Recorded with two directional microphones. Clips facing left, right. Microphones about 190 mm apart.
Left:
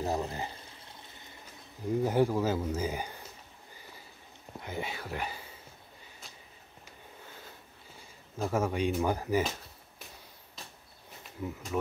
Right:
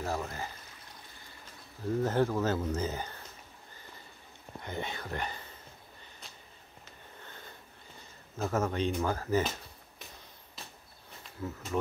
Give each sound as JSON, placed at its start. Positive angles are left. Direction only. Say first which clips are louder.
{"t": 0.0, "sound": "pour", "louder": "left 3 dB", "side_deg": 20}
{"t": 1.9, "sound": "speech", "louder": "left 2 dB", "side_deg": 10}
{"t": 4.6, "sound": "speech", "louder": "even", "side_deg": 5}
{"t": 7.2, "sound": "wheeze", "louder": "even", "side_deg": 5}
{"t": 8.0, "sound": "speech", "louder": "left 1 dB", "side_deg": 10}
{"t": 11.4, "sound": "speech", "louder": "left 1 dB", "side_deg": 15}